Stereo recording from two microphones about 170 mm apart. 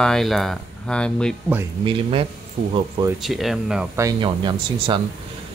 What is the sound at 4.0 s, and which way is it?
Speech, 25° right (ahead or behind).